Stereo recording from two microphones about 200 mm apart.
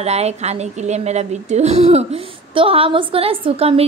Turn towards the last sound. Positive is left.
turn(degrees=-30)  # may be behind; listen again after turning